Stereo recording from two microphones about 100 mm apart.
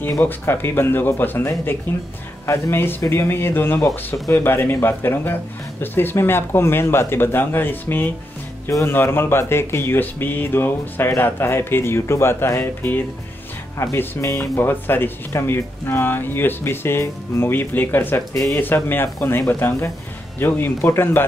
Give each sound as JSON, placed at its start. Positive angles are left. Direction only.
{"t": 0.2, "sound": "speech", "side_deg": 20}
{"t": 18.3, "sound": "speech", "side_deg": 30}
{"t": 18.6, "sound": "speech", "side_deg": 20}